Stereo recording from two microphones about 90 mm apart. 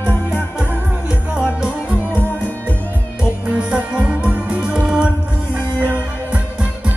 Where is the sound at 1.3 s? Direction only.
15° right (ahead or behind).